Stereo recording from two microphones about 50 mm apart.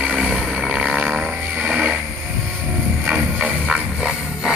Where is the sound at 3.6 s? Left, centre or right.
Centre.